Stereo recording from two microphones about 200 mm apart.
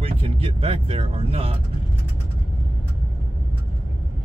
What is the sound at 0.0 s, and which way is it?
Vehicle, 30° right (ahead or behind).